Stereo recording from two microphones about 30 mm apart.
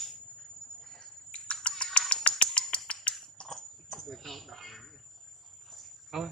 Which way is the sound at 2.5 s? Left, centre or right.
Left.